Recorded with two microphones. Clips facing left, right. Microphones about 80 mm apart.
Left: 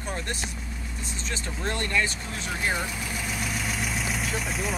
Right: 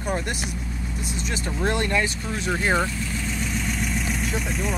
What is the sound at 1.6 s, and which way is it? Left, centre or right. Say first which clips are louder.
Speech: right 4 dB; centre.